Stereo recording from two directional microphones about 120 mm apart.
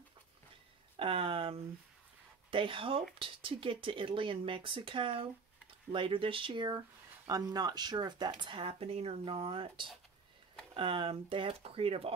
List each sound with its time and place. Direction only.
0.9 s speech: 50° right (ahead or behind)